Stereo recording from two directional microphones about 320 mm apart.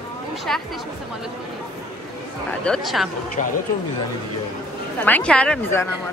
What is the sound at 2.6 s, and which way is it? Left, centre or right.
Speech, centre.